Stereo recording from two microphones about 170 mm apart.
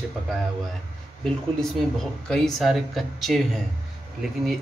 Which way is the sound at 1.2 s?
5° left (ahead or behind).